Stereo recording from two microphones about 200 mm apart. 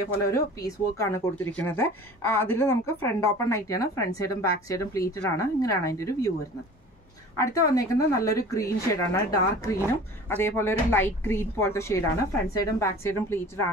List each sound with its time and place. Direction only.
0.3 s speech: 15° left (ahead or behind)
7.3 s speech: 15° left (ahead or behind)